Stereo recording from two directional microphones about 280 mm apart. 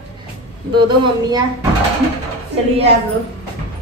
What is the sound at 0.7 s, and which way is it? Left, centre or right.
Speech, centre.